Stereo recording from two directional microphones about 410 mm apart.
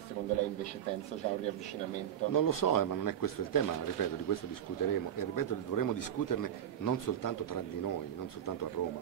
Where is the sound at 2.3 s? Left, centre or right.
Left.